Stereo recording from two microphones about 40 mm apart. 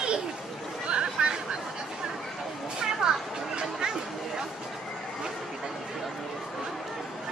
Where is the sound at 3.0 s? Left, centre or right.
Centre.